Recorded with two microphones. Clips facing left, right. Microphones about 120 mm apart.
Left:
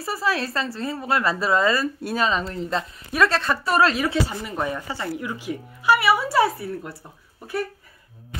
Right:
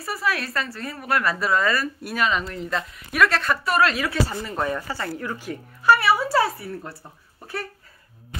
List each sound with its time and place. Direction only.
0.0 s a woman's voice: 30° left (ahead or behind)
4.3 s speech: 15° left (ahead or behind)